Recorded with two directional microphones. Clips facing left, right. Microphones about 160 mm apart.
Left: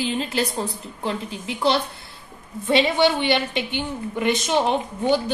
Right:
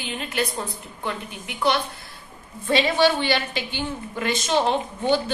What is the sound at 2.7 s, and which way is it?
A woman's voice, 20° left (ahead or behind).